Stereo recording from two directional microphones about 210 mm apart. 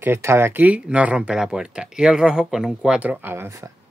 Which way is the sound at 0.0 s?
10° right (ahead or behind).